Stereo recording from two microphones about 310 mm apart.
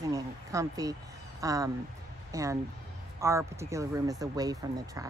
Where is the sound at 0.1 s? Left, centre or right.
Centre.